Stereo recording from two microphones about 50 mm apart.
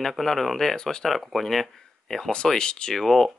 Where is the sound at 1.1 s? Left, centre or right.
Centre.